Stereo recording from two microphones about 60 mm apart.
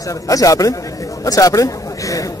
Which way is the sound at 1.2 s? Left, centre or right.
Left.